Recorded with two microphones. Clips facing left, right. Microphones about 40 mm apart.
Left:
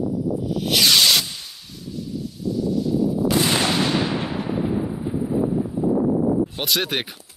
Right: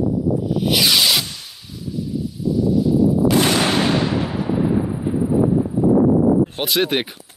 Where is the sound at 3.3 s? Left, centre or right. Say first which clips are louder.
Right 4 dB; right.